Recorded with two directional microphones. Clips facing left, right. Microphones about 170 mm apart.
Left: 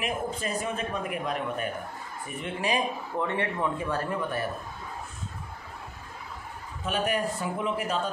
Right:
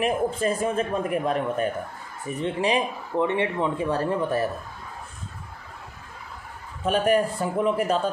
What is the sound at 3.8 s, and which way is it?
Speech, 30° right (ahead or behind).